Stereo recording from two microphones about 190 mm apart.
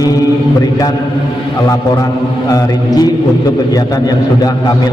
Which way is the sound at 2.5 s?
20° left (ahead or behind).